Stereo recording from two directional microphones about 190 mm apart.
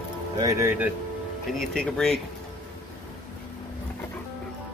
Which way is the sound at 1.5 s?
5° left (ahead or behind).